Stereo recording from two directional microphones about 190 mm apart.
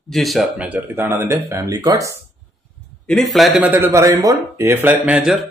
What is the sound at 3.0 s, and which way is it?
Speech, centre (ahead or behind).